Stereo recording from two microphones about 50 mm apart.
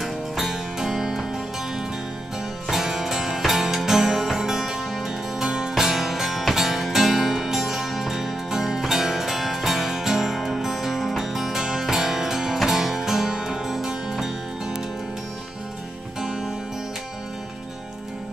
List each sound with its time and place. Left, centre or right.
0.0 s music: centre
2.7 s music: centre